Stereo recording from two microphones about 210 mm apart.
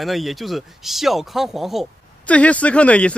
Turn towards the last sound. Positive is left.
turn(degrees=5)  # may be behind; listen again after turning